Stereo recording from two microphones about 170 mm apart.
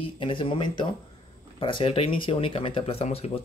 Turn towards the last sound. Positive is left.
turn(degrees=35)  # may be behind; listen again after turning